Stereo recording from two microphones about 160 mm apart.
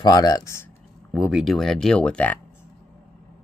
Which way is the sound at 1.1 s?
5° right (ahead or behind).